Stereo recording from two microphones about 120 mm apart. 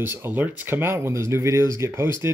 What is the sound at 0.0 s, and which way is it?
Speech, 20° right (ahead or behind).